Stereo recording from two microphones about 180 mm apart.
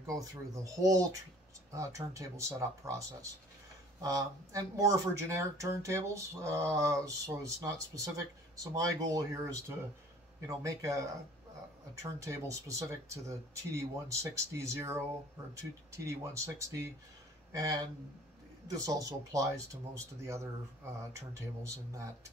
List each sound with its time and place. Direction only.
0.0 s speech: 20° right (ahead or behind)